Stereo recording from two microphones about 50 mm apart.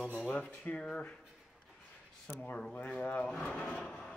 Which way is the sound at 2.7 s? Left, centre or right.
Left.